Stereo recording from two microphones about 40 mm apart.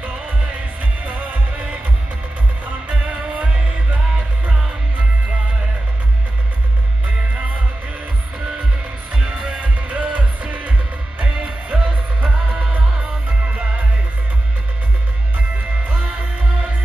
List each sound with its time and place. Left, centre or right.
2.9 s music: right
9.1 s music: centre
9.6 s music: right